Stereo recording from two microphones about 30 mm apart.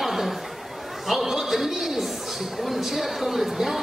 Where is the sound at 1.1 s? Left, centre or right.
Centre.